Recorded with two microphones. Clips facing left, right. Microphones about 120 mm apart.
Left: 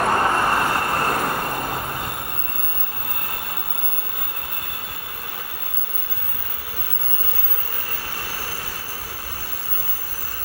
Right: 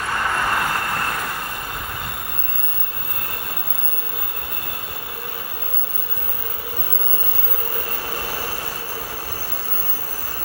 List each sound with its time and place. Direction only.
0.0 s vehicle: 40° left (ahead or behind)